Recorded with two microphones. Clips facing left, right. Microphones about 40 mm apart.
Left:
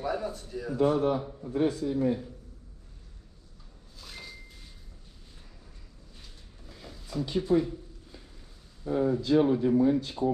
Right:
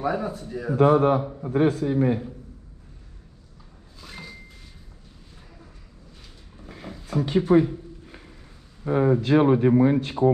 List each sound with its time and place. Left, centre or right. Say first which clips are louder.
0.0 s speech: right 5 dB; centre
0.7 s a man's voice: right 7 dB; right
1.3 s a man's voice: right 6 dB; right
4.0 s a sound: right 4 dB; centre
6.6 s a sound: right 8 dB; right
8.8 s speech: right 6 dB; right